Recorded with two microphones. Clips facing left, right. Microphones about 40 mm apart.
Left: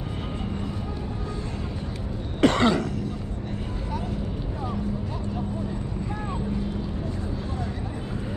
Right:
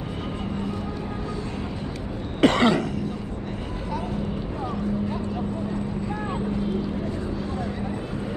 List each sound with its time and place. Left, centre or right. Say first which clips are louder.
2.4 s throat clearing: right 1 dB; right